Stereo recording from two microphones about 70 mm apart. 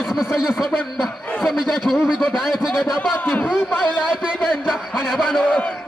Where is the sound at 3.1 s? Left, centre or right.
Left.